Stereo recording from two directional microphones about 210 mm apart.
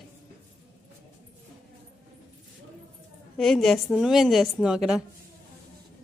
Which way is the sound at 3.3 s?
Centre (ahead or behind).